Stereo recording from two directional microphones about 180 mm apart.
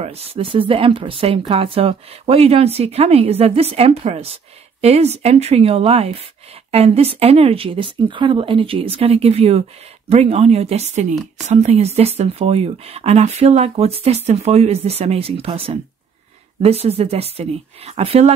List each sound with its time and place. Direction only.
0.0 s a woman's voice: 35° right (ahead or behind)